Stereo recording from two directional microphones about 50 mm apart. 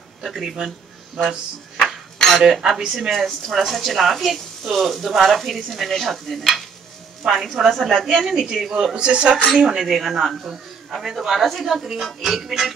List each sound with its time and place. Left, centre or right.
0.2 s speech: centre
1.8 s a sound: centre
2.8 s speech: centre
3.1 s speech: centre
9.8 s speech: centre